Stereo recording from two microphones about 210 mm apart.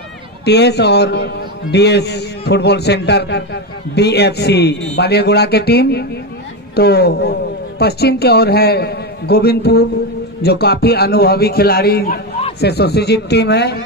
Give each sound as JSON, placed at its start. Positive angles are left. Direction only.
{"t": 0.5, "sound": "a man's voice", "side_deg": 55}